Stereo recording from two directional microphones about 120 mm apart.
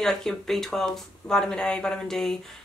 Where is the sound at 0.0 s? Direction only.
5° left (ahead or behind).